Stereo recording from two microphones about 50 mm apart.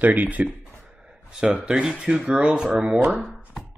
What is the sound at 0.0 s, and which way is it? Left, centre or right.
Speech, right.